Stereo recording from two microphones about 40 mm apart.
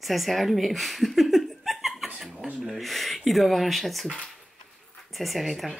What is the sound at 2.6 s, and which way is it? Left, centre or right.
Speech, centre.